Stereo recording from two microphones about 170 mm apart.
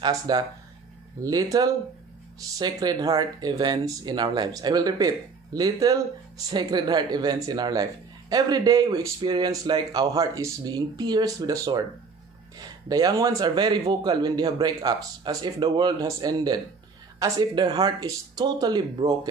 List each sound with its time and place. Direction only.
0.3 s speech: 25° right (ahead or behind)